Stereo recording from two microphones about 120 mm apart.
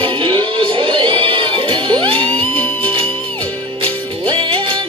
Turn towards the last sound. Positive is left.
turn(degrees=-45)  # may be behind; listen again after turning